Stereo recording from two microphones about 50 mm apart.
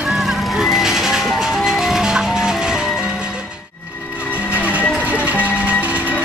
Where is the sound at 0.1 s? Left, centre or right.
Centre.